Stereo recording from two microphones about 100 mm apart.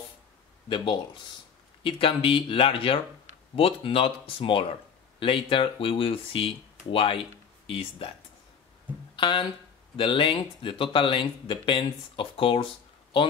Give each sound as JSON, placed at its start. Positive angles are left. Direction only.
{"t": 0.7, "sound": "speech", "side_deg": 50}
{"t": 9.1, "sound": "speech", "side_deg": 55}